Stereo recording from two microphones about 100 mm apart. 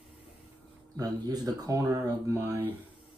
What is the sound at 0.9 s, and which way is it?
Speech, 40° right (ahead or behind).